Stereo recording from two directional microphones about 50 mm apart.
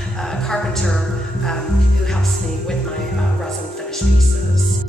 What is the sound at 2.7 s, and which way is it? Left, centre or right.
Music, centre.